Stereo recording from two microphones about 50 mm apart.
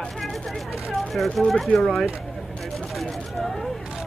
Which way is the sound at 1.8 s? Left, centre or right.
Centre.